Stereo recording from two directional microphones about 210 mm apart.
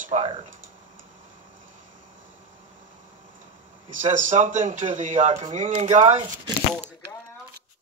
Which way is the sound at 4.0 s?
35° right (ahead or behind).